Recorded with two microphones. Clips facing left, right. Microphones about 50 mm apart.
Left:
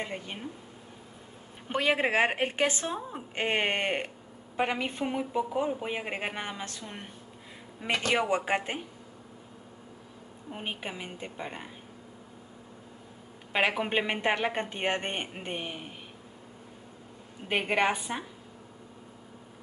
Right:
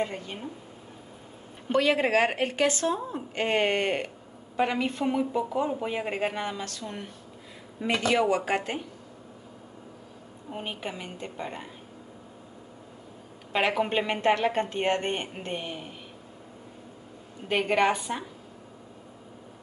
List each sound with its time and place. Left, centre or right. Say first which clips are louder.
0.0 s speech: right 5 dB; centre
1.7 s a woman's voice: right 3 dB; centre
8.1 s a woman's voice: right 2 dB; left
10.6 s speech: right 1 dB; centre
13.5 s speech: right 2 dB; centre
17.5 s speech: right 3 dB; centre